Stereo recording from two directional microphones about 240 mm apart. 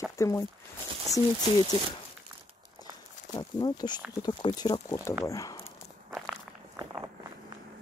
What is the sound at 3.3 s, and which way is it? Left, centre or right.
Speech, centre.